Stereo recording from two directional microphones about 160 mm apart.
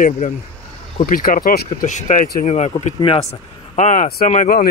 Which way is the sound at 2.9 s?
35° left (ahead or behind).